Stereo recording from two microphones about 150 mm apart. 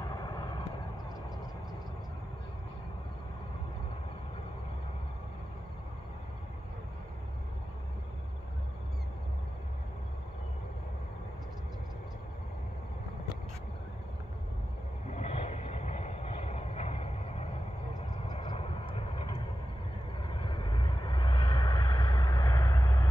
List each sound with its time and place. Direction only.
0.1 s vehicle: 25° left (ahead or behind)
15.0 s vehicle: 50° left (ahead or behind); by 23.0 s 20° left (ahead or behind)